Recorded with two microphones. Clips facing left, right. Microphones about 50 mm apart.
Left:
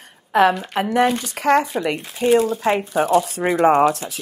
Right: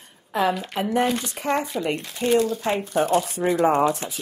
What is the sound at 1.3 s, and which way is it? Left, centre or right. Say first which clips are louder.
Speech: left 7 dB; left.